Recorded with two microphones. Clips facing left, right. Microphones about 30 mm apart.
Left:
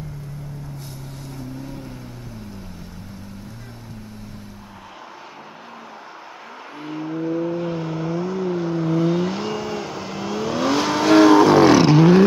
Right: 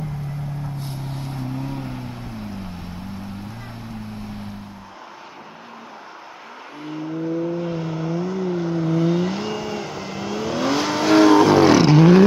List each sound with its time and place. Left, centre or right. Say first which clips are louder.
0.7 s vehicle: right 5 dB; right
6.8 s vehicle: left 1 dB; centre